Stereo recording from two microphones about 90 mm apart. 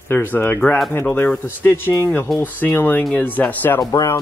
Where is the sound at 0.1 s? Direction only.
20° left (ahead or behind).